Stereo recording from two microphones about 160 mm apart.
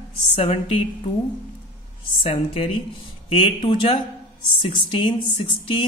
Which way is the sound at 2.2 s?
35° left (ahead or behind).